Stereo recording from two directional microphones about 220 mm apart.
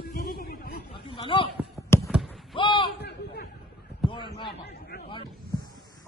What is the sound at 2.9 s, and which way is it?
Chatter, 50° left (ahead or behind).